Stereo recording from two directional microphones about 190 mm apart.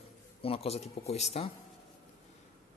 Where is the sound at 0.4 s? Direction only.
30° left (ahead or behind).